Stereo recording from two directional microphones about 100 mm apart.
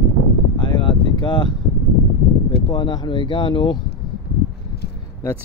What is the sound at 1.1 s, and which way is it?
Speech, 50° left (ahead or behind).